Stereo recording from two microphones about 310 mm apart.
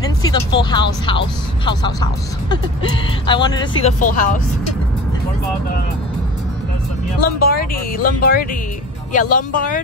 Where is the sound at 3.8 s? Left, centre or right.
Left.